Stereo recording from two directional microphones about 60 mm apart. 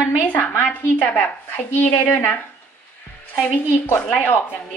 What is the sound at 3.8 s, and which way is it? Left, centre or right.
Speech, left.